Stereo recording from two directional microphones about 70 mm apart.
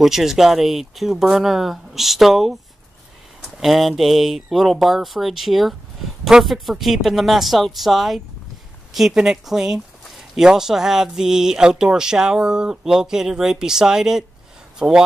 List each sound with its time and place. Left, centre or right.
0.0 s speech: centre
3.5 s speech: centre
14.8 s speech: right